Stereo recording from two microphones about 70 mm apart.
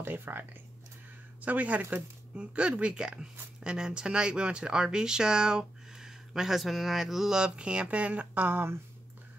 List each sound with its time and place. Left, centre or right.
0.0 s speech: right